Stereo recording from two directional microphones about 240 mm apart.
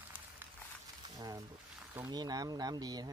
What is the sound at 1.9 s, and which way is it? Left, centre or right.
Speech, centre.